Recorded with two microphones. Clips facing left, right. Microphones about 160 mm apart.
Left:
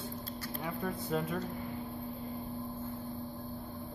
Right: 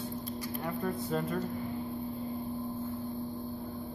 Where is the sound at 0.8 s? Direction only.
Centre (ahead or behind).